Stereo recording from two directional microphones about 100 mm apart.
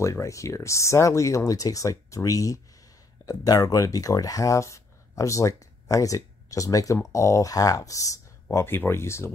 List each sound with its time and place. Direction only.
0.0 s speech: 30° left (ahead or behind)